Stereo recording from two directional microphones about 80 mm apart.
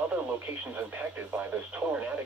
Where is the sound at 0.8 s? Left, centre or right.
Right.